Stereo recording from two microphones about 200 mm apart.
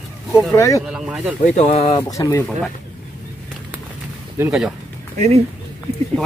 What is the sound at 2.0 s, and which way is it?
Speech, 15° left (ahead or behind).